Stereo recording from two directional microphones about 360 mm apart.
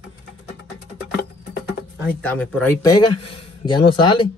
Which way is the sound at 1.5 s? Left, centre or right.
Left.